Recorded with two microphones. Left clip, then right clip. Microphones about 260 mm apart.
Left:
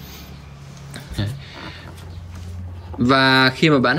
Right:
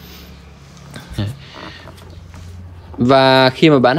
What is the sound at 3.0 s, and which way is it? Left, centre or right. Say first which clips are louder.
Speech: right 4 dB; centre.